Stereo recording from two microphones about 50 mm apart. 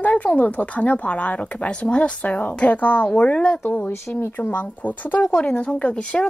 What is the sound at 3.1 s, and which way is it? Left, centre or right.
Speech, left.